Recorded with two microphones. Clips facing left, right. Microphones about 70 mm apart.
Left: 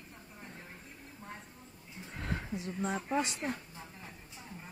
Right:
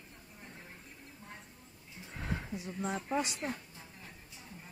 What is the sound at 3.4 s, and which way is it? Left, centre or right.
Speech, left.